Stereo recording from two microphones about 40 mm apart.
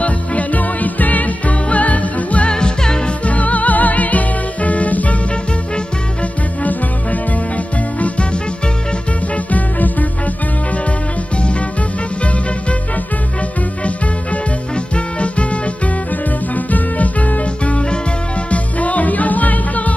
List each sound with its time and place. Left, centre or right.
0.0 s music: left
2.5 s music: centre
3.3 s music: left
6.6 s music: left
9.5 s music: left
15.1 s music: left